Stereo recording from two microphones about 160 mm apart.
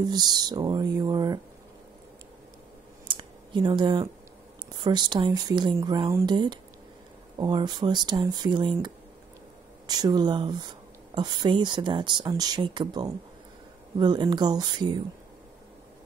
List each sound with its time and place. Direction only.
0.1 s speech: 25° right (ahead or behind)
3.1 s a sound: 30° right (ahead or behind)
4.8 s speech: 25° right (ahead or behind)